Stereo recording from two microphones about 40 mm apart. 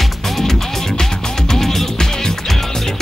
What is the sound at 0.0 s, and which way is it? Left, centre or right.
Music, centre.